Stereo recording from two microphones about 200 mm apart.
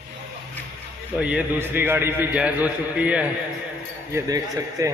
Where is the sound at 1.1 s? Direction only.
5° right (ahead or behind).